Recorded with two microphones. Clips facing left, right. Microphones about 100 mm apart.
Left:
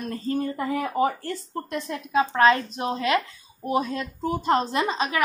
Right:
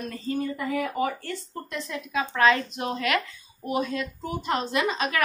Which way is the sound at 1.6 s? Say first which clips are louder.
Left 5 dB; 50° left (ahead or behind).